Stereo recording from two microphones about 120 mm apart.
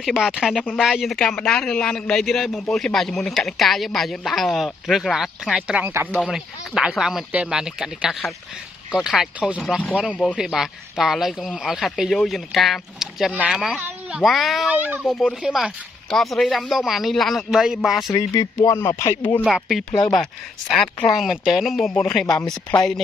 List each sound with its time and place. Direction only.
0.0 s speech: centre (ahead or behind)
14.7 s speech: 10° right (ahead or behind)
15.0 s speech: centre (ahead or behind)
18.1 s speech: 30° left (ahead or behind)
19.4 s speech: centre (ahead or behind)